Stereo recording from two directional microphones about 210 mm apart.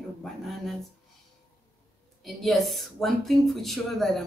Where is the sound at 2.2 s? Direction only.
Centre (ahead or behind).